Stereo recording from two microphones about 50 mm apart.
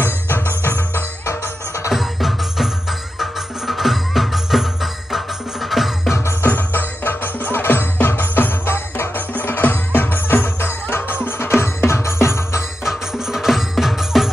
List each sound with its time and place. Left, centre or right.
0.0 s music: left
1.9 s music: centre
6.4 s music: left
12.8 s music: centre